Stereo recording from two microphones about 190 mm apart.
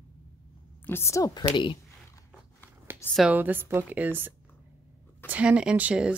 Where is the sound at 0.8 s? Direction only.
15° left (ahead or behind).